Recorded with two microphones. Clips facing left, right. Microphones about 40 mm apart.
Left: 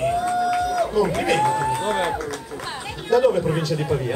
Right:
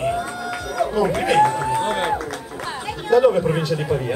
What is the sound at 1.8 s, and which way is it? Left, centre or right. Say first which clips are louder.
Run: right 2 dB; right.